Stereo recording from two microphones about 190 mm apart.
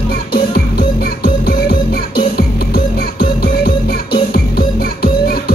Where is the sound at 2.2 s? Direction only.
50° left (ahead or behind).